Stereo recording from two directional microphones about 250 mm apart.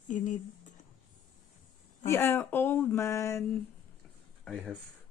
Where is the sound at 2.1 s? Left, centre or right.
Centre.